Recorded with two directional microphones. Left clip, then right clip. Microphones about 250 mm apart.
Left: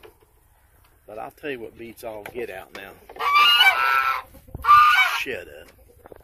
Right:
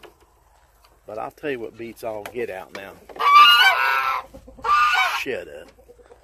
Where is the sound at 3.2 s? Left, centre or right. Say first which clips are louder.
Right 4 dB; right.